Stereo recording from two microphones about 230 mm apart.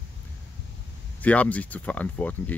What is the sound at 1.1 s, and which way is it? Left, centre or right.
Speech, centre.